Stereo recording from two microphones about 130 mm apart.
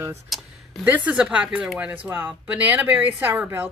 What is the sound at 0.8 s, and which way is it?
Speech, 10° right (ahead or behind).